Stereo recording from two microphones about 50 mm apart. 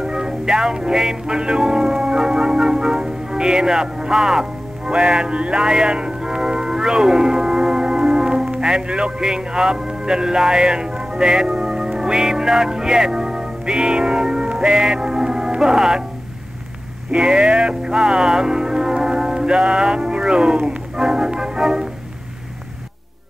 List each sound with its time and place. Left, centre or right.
0.0 s music: centre
17.1 s music: right